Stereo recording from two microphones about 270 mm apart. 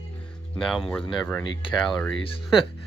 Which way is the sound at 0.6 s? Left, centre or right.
Centre.